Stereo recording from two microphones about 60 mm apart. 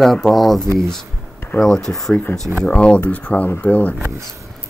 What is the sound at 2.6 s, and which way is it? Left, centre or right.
Speech, centre.